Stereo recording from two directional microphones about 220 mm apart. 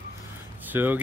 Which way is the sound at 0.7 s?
10° right (ahead or behind).